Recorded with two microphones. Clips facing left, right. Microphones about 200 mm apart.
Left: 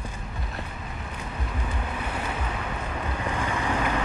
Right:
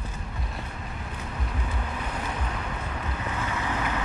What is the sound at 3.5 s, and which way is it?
Vehicle, 30° left (ahead or behind).